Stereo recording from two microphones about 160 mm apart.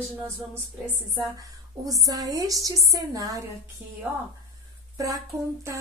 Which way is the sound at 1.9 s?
20° right (ahead or behind).